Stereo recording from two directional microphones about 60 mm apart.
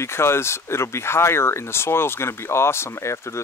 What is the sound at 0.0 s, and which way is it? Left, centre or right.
Speech, left.